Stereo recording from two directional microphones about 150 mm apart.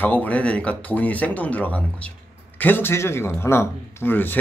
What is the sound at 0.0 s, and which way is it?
Speech, 10° left (ahead or behind).